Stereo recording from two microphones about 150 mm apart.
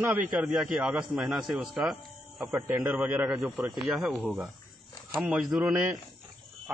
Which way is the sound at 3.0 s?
10° right (ahead or behind).